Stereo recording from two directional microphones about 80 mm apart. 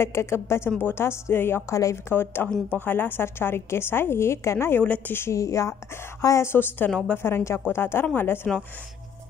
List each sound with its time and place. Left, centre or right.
0.0 s a woman's voice: left
4.8 s a woman's voice: centre